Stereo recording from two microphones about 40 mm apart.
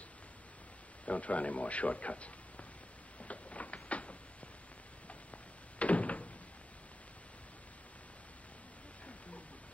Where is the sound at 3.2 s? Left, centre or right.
Left.